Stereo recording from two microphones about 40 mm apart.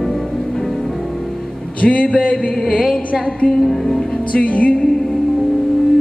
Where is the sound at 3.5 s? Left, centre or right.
Centre.